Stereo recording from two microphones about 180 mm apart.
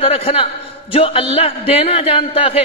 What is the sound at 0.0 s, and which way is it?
A man's voice, 30° left (ahead or behind).